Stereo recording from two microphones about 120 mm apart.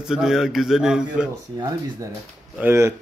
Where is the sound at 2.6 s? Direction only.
20° right (ahead or behind).